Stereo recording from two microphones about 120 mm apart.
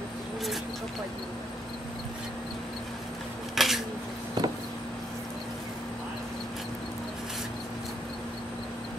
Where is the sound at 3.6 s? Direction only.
Centre (ahead or behind).